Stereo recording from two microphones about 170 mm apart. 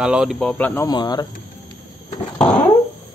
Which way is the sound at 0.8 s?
25° left (ahead or behind).